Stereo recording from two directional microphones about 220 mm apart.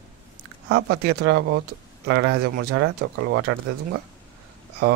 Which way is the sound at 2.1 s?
70° right (ahead or behind).